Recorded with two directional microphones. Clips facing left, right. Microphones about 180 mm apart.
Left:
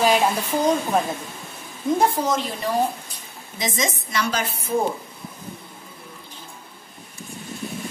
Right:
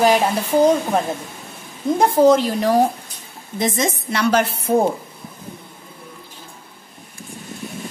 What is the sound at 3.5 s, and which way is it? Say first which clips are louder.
A woman's voice: right 5 dB; 55° right (ahead or behind).